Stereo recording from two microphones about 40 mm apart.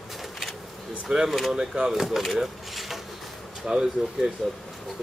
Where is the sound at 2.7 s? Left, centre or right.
Centre.